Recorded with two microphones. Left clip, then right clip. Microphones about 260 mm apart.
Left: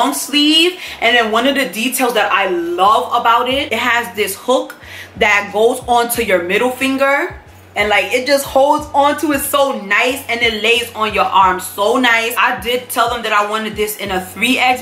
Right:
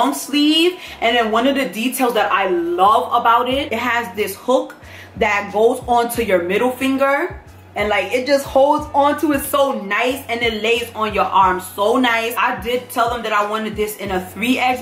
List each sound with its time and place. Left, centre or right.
0.0 s speech: centre